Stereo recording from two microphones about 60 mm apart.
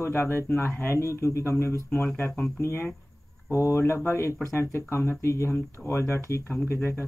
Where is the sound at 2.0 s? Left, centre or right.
Left.